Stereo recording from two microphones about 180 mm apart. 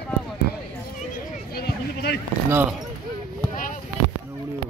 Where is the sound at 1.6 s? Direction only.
60° left (ahead or behind).